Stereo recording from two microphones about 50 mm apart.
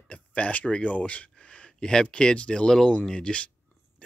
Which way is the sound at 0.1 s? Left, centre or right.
Left.